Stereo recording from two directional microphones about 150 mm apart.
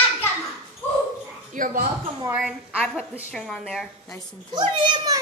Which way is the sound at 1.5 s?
65° right (ahead or behind).